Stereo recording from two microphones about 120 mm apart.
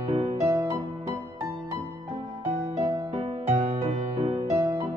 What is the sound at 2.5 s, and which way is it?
Music, 70° right (ahead or behind).